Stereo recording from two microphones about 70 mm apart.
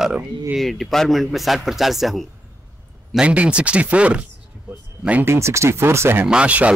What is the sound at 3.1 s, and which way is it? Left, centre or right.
A man's voice, centre.